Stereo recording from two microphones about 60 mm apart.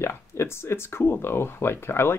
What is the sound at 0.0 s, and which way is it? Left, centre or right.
Speech, left.